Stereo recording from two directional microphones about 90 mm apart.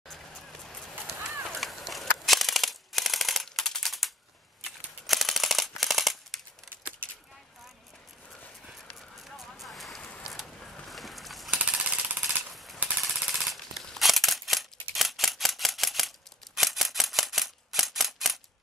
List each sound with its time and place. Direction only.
1.5 s a sound: centre (ahead or behind)
4.6 s machine gun: centre (ahead or behind)
8.6 s clip-clop: centre (ahead or behind)
10.3 s a sound: centre (ahead or behind)
11.5 s jackhammer: 15° right (ahead or behind)
12.2 s machine gun: 5° right (ahead or behind)
16.5 s single-lens reflex camera: centre (ahead or behind)